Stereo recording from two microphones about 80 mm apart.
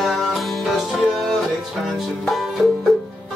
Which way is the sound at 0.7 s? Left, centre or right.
Centre.